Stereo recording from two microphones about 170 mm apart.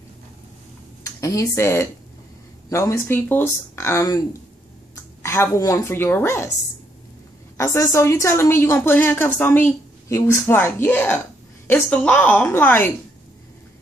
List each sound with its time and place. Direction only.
1.0 s a woman's voice: 20° left (ahead or behind)
7.5 s a woman's voice: 20° left (ahead or behind)